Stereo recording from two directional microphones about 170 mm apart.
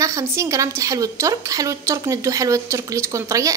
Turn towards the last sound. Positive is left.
turn(degrees=-20)  # may be behind; listen again after turning